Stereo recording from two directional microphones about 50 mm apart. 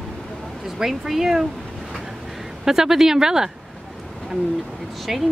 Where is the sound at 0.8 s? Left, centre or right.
Centre.